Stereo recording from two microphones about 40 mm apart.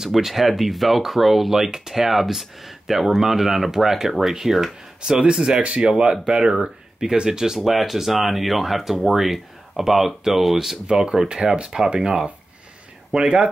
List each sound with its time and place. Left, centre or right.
0.1 s speech: centre; by 6.1 s right
6.3 s speech: centre
10.9 s speech: centre